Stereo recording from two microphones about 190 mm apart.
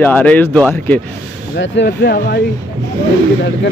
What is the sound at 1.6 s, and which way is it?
Speech, 70° left (ahead or behind).